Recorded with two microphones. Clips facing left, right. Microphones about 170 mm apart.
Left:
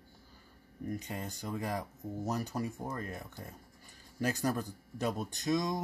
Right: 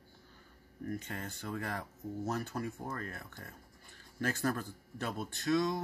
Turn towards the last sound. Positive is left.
turn(degrees=15)  # may be behind; listen again after turning